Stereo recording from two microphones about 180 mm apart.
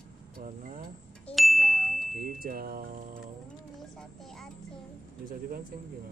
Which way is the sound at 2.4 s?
55° right (ahead or behind).